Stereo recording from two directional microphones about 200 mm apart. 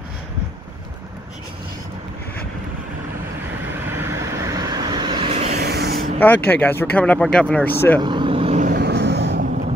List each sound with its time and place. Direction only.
3.8 s vehicle: 10° right (ahead or behind); by 5.6 s 30° right (ahead or behind)
5.6 s a sound: 50° right (ahead or behind)
6.1 s speech: 10° left (ahead or behind)
8.0 s vehicle: 25° right (ahead or behind)
8.6 s vehicle: 50° right (ahead or behind)